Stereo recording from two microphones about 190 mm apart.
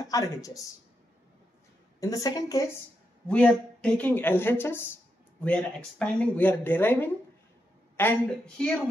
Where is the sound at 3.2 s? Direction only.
5° left (ahead or behind).